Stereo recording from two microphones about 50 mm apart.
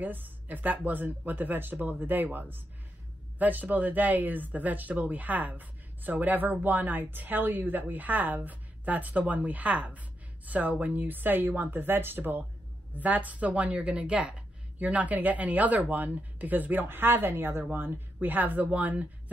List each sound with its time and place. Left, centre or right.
0.0 s speech: right